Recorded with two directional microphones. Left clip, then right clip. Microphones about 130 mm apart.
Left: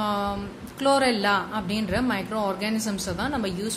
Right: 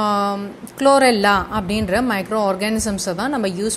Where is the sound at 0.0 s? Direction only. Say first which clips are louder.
Right 8 dB; 50° right (ahead or behind).